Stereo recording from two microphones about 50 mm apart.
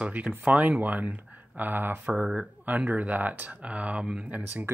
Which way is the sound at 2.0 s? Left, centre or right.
Right.